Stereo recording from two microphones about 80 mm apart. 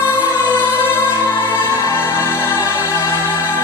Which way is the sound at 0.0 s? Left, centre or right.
Left.